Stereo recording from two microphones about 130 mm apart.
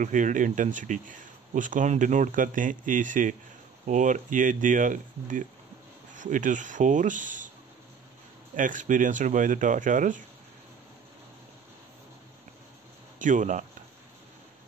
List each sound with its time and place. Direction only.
0.0 s speech: 75° right (ahead or behind)
8.5 s speech: 85° right
13.2 s speech: 75° right (ahead or behind)